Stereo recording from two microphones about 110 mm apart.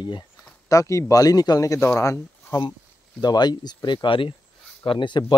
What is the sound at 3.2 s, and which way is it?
Speech, 40° left (ahead or behind).